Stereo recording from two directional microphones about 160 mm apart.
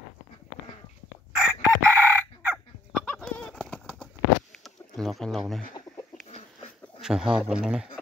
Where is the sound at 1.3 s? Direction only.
10° right (ahead or behind).